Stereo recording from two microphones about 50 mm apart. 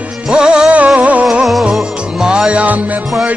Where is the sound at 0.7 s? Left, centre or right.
Right.